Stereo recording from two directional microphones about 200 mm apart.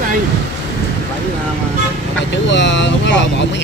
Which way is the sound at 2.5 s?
65° left (ahead or behind).